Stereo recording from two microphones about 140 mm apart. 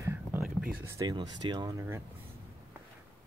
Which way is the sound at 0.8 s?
20° right (ahead or behind).